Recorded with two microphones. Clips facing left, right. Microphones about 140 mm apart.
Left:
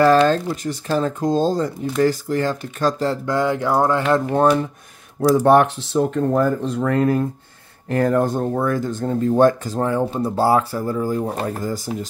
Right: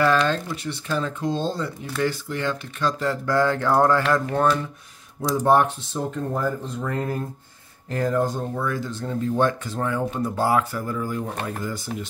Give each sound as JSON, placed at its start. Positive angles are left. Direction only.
{"t": 0.0, "sound": "speech", "side_deg": 40}
{"t": 3.3, "sound": "speech", "side_deg": 15}
{"t": 4.1, "sound": "speech", "side_deg": 25}
{"t": 5.3, "sound": "speech", "side_deg": 70}
{"t": 7.9, "sound": "speech", "side_deg": 60}